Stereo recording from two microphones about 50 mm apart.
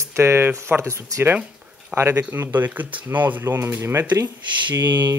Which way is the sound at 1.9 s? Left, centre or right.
Right.